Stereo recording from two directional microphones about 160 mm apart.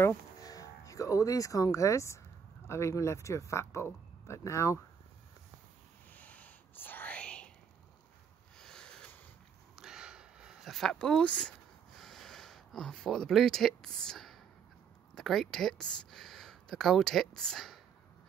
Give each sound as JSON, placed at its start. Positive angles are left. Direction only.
{"t": 0.0, "sound": "speech", "side_deg": 20}
{"t": 6.1, "sound": "whispering", "side_deg": 10}
{"t": 8.5, "sound": "a sound", "side_deg": 5}
{"t": 12.0, "sound": "speech", "side_deg": 0}